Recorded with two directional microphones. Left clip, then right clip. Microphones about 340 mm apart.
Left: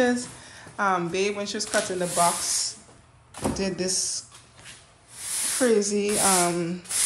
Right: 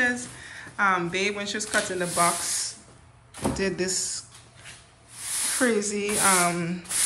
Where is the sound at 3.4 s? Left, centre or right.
Centre.